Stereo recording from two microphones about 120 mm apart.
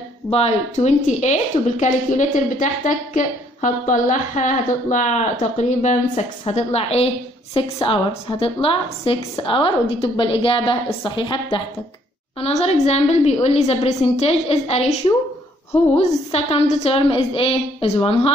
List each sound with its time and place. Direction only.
0.3 s a woman's voice: 65° left (ahead or behind); by 11.6 s 45° left (ahead or behind)
12.4 s a woman's voice: 60° left (ahead or behind)